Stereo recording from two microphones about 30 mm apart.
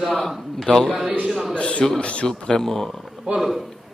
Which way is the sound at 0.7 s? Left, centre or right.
Left.